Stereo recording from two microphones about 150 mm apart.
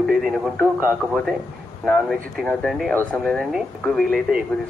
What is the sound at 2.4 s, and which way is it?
Speech, 5° left (ahead or behind).